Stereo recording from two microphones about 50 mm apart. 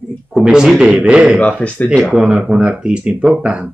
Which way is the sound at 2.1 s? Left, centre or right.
Centre.